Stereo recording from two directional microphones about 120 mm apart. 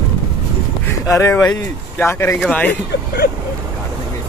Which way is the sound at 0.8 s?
20° left (ahead or behind).